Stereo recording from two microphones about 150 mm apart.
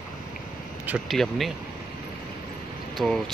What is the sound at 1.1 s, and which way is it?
Speech, centre (ahead or behind).